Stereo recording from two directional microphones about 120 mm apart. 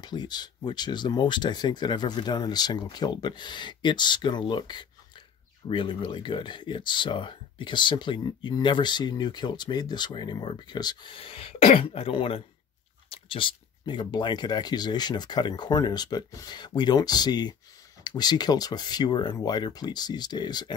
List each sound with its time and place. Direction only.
0.0 s speech: 35° left (ahead or behind)